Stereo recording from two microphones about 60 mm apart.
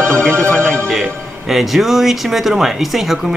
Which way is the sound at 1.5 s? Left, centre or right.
Centre.